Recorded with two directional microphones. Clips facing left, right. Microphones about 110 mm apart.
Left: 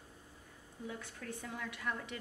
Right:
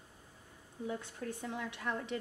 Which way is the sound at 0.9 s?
25° right (ahead or behind).